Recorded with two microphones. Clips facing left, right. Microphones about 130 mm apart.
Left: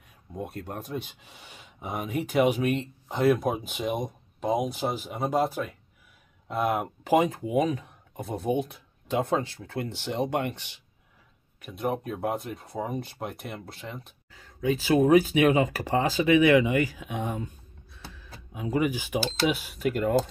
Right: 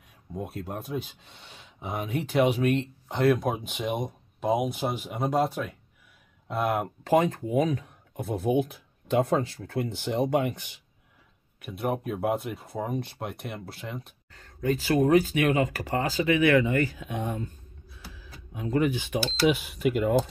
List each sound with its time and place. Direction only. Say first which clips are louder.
0.3 s speech: right 1 dB; centre (ahead or behind)
15.0 s speech: left 2 dB; 15° left (ahead or behind); by 20.2 s centre (ahead or behind)